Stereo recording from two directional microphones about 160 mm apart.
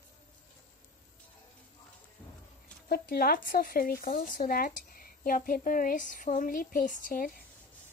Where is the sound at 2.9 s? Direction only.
70° left (ahead or behind).